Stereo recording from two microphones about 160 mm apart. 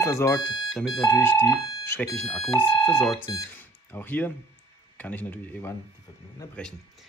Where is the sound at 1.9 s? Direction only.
10° left (ahead or behind).